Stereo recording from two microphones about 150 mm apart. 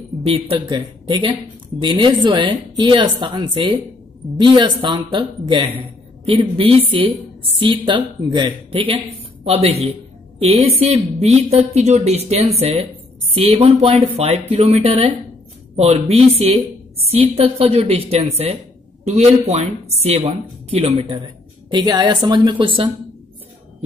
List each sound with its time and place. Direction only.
0.2 s a woman's voice: 40° right (ahead or behind)
21.6 s speech: 30° right (ahead or behind)